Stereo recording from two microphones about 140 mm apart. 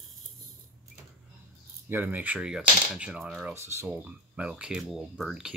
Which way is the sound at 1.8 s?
15° right (ahead or behind).